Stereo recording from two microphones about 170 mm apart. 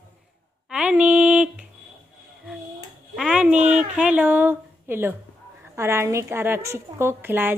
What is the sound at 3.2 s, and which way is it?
A woman's voice, 5° right (ahead or behind).